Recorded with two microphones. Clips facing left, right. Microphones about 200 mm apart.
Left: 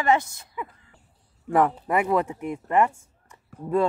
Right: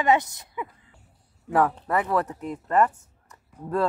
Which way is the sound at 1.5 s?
10° left (ahead or behind).